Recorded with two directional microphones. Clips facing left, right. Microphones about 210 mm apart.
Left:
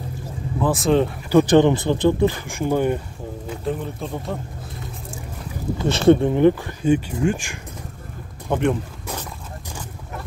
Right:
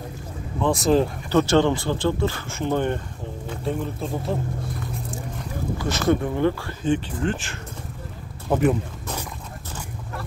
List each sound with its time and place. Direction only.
0.6 s a man's voice: centre (ahead or behind)
1.3 s a man's voice: 15° left (ahead or behind); by 4.4 s centre (ahead or behind)
5.8 s speech: 30° left (ahead or behind); by 7.5 s 10° left (ahead or behind)
8.5 s a man's voice: 5° right (ahead or behind)